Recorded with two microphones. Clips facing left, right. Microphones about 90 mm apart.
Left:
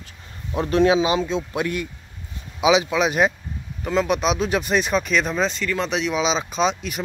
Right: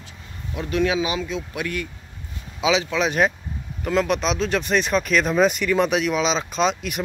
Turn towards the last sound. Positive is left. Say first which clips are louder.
# even
turn(degrees=0)  # may be behind; listen again after turning